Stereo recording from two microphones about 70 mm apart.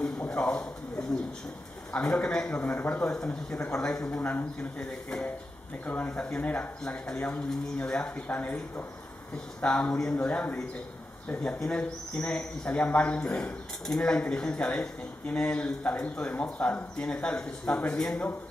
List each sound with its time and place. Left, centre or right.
0.0 s a sound: centre
0.6 s speech: centre
8.4 s speech: left
9.6 s speech: centre
13.1 s speech: centre